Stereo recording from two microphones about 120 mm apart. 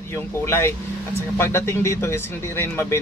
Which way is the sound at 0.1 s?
20° left (ahead or behind).